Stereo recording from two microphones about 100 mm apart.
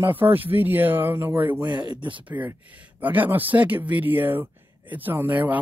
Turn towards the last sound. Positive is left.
turn(degrees=-15)  # may be behind; listen again after turning